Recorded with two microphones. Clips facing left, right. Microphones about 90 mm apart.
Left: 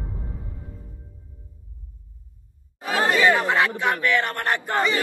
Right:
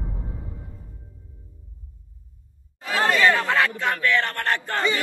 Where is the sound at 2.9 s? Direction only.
20° left (ahead or behind).